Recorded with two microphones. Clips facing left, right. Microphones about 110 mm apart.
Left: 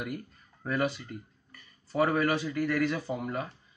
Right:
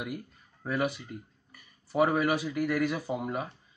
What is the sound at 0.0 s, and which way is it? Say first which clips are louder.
Speech: even; 10° right (ahead or behind).